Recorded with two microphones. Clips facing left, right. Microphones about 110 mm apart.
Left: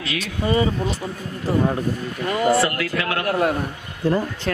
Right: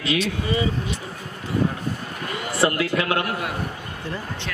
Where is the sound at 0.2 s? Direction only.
40° left (ahead or behind).